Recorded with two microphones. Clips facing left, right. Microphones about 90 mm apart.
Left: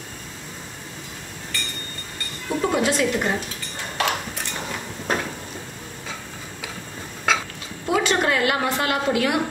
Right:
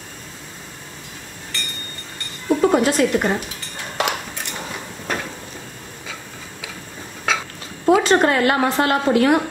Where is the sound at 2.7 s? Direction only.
50° right (ahead or behind).